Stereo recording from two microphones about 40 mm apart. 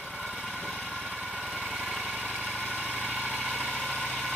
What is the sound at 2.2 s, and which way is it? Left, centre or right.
Vehicle, right.